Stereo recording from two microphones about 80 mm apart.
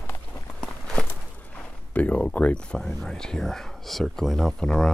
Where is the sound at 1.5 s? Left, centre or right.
Centre.